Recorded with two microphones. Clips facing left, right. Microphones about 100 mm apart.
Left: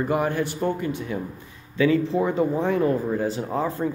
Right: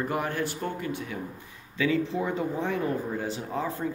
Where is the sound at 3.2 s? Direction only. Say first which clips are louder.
Left 6 dB; 40° left (ahead or behind).